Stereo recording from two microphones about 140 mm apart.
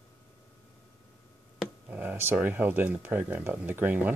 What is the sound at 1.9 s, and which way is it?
Speech, 15° right (ahead or behind).